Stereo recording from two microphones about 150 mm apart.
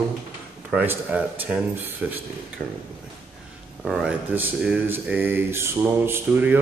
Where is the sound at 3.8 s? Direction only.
Centre (ahead or behind).